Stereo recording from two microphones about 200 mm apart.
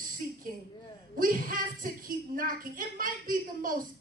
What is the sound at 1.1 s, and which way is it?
A woman's voice, 45° right (ahead or behind).